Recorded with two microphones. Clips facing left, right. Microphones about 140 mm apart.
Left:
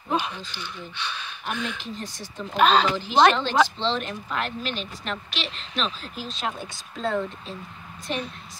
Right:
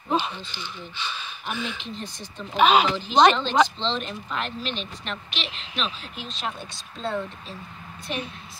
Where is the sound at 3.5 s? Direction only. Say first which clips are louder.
Even; 15° left (ahead or behind).